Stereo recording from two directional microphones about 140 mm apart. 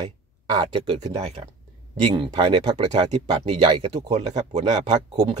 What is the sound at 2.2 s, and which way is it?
Speech, 40° right (ahead or behind).